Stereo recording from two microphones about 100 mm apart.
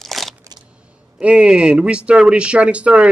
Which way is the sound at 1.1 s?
10° right (ahead or behind).